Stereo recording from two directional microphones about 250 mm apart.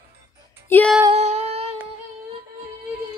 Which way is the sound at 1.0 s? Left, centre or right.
Right.